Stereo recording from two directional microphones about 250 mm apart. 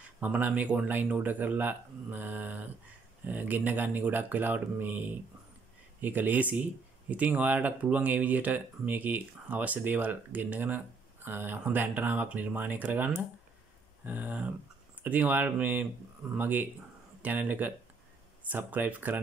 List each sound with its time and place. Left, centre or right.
0.2 s speech: centre